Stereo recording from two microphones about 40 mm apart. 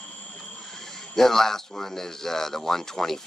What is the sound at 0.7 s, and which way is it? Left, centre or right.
Speech, centre.